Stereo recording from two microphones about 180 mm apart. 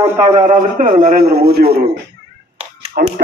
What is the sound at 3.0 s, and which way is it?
Speech, 55° right (ahead or behind).